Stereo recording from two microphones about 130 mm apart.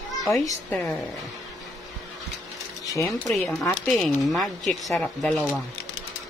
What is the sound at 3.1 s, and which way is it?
Speech, centre (ahead or behind).